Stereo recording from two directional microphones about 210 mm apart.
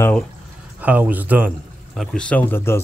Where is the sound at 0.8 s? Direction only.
10° right (ahead or behind).